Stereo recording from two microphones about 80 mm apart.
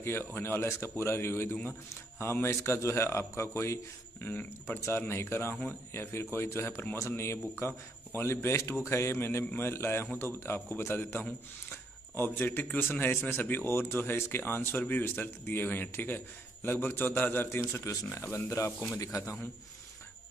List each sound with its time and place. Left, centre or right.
0.0 s a man's voice: left